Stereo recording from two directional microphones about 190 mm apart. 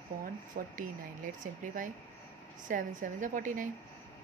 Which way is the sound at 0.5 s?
50° right (ahead or behind).